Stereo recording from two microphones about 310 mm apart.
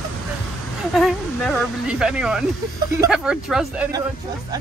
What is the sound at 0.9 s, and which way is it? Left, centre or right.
Speech, centre.